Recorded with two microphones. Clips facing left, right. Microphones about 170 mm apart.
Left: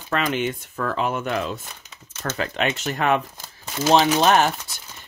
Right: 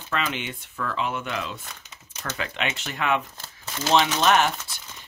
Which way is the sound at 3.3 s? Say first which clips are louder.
Left 4 dB; 15° left (ahead or behind).